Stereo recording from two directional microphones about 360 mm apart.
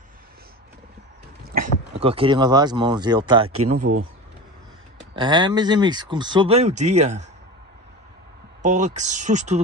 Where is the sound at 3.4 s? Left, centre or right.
Right.